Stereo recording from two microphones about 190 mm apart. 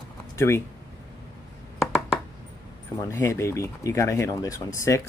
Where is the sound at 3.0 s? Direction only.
15° left (ahead or behind).